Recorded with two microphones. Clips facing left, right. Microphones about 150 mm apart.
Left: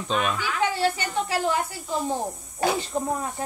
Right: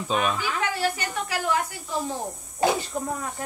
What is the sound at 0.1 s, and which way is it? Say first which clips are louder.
Speech: right 1 dB; 5° right (ahead or behind).